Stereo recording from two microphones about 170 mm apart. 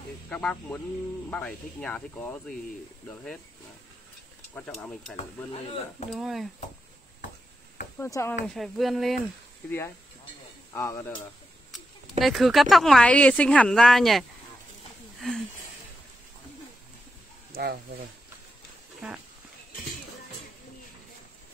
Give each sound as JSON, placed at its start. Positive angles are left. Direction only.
{"t": 0.3, "sound": "speech", "side_deg": 5}
{"t": 4.6, "sound": "speech", "side_deg": 10}
{"t": 5.1, "sound": "speech", "side_deg": 40}
{"t": 6.1, "sound": "speech", "side_deg": 0}
{"t": 8.0, "sound": "speech", "side_deg": 15}
{"t": 8.5, "sound": "speech", "side_deg": 0}
{"t": 9.7, "sound": "speech", "side_deg": 15}
{"t": 11.7, "sound": "speech", "side_deg": 0}
{"t": 17.5, "sound": "a sound", "side_deg": -70}
{"t": 18.9, "sound": "speech", "side_deg": -5}